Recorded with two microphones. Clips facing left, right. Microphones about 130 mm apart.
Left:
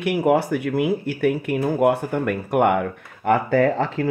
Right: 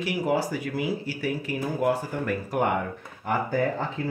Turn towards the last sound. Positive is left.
turn(degrees=80)